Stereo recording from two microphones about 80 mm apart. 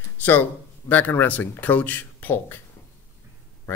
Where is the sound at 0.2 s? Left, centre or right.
Left.